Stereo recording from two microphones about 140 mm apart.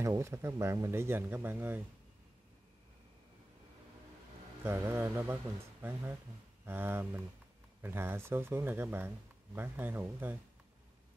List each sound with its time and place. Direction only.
0.0 s speech: 20° right (ahead or behind)
4.6 s speech: 20° right (ahead or behind)